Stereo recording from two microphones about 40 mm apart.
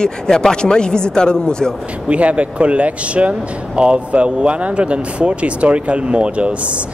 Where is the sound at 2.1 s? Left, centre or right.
Right.